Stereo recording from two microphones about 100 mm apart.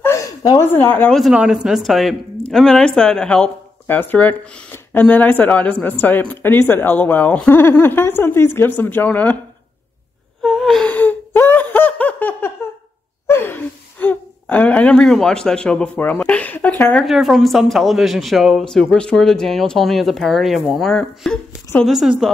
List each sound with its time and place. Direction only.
0.0 s a sound: 30° left (ahead or behind)
0.4 s a woman's voice: 40° left (ahead or behind)
0.7 s speech: 20° left (ahead or behind)
1.3 s speech: 5° right (ahead or behind); by 3.5 s 10° left (ahead or behind)
3.8 s speech: 20° left (ahead or behind)
10.4 s gasp: centre (ahead or behind)
10.9 s laughter: 15° left (ahead or behind)
13.3 s speech: 20° left (ahead or behind)
17.0 s speech: centre (ahead or behind)